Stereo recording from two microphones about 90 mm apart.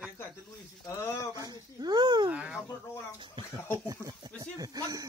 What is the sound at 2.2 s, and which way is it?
Speech, 15° right (ahead or behind).